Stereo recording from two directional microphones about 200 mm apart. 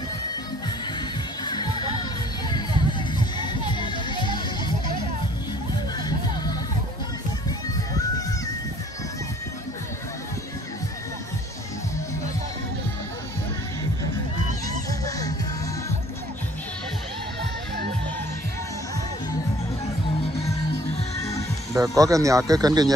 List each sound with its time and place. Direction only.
1.4 s music: 20° left (ahead or behind)
14.9 s music: 15° left (ahead or behind)
21.2 s music: 15° left (ahead or behind)
21.7 s speech: 15° right (ahead or behind)